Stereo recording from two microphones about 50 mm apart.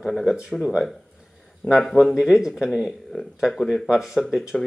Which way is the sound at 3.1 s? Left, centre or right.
Centre.